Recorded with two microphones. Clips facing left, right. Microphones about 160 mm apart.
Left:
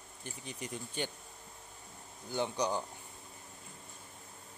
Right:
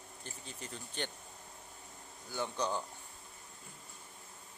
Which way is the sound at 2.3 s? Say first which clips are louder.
Left 3 dB; 15° left (ahead or behind).